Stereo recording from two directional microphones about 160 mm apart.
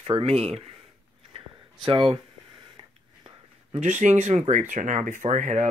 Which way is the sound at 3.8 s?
45° right (ahead or behind).